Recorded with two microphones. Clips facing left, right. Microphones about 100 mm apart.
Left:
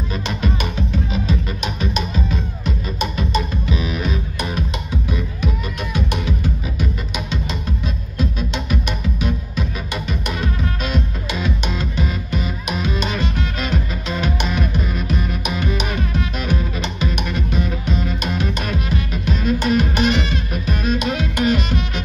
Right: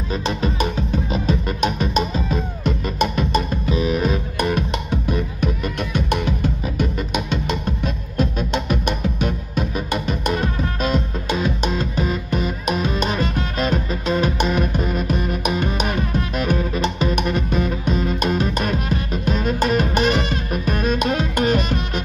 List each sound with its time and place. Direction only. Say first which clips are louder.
0.1 s music: right 3 dB; 35° right (ahead or behind)
1.1 s music: right 1 dB; 45° right (ahead or behind)
2.6 s music: right 5 dB; 55° right (ahead or behind)